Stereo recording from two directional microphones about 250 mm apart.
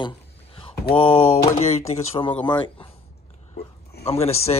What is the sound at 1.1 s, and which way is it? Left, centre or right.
Speech, left.